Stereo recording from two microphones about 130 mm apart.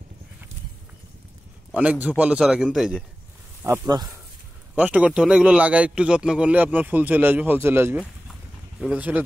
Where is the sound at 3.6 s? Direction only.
25° right (ahead or behind).